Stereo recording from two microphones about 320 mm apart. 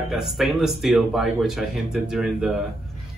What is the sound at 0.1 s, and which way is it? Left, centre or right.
Speech, centre.